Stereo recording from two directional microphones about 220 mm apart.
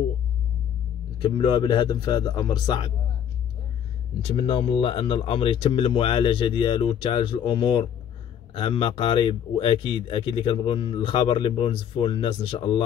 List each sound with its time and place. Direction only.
1.2 s speech: 20° left (ahead or behind)
4.2 s speech: 25° left (ahead or behind)